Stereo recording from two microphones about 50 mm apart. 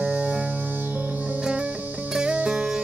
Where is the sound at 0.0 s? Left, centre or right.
Centre.